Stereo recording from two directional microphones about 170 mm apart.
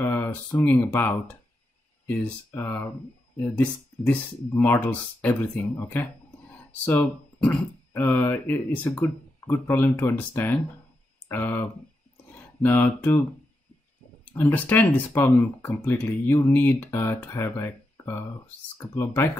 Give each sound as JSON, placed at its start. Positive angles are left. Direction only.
{"t": 0.0, "sound": "speech", "side_deg": 10}
{"t": 14.3, "sound": "speech", "side_deg": 10}